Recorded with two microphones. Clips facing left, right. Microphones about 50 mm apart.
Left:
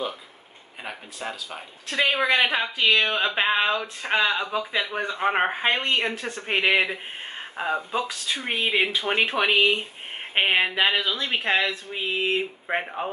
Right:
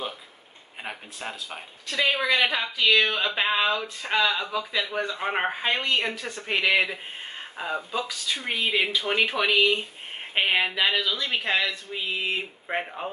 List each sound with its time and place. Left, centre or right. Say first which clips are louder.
1.2 s speech: left 3 dB; centre
1.9 s speech: left 2 dB; left